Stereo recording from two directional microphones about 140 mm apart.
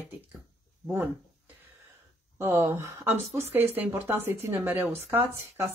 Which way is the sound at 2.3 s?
15° right (ahead or behind).